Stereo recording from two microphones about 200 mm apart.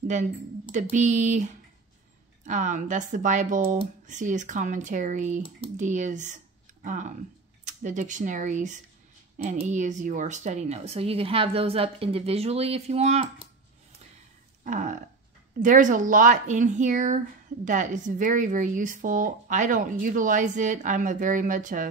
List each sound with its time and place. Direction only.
0.1 s speech: 35° right (ahead or behind)
14.6 s a sound: 40° right (ahead or behind)
15.6 s speech: 40° right (ahead or behind)